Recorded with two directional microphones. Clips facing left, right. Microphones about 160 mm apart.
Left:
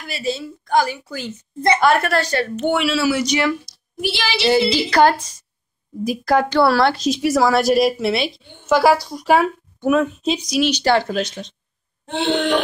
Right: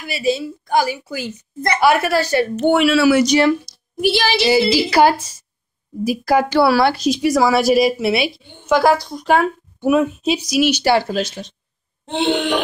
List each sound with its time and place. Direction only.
0.0 s a woman's voice: 10° right (ahead or behind)
2.5 s speech: 35° right (ahead or behind)
2.8 s speech: 55° right (ahead or behind)
3.3 s speech: 35° right (ahead or behind)
4.0 s speech: 45° right (ahead or behind)
4.4 s a woman's voice: 5° right (ahead or behind)
8.6 s a woman's voice: 5° left (ahead or behind)
9.8 s a woman's voice: 10° right (ahead or behind)
12.1 s a woman's voice: 15° right (ahead or behind)